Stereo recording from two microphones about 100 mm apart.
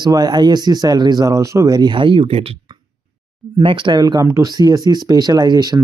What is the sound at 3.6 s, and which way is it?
Speech, 60° right (ahead or behind).